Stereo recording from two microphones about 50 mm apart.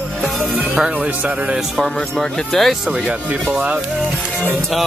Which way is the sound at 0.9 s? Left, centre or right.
Right.